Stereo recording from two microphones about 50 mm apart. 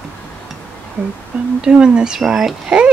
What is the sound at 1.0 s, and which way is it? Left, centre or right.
Humming, right.